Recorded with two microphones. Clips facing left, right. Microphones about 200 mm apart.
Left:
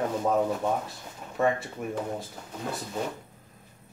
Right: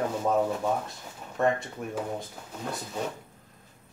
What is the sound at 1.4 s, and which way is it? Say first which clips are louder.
Speech: even; 5° left (ahead or behind).